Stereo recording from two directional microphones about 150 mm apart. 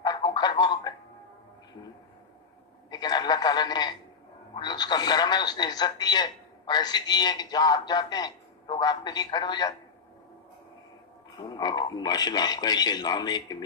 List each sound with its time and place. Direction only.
0.0 s a sound: 30° left (ahead or behind)
2.9 s a man's voice: 30° left (ahead or behind)
11.3 s speech: 30° left (ahead or behind)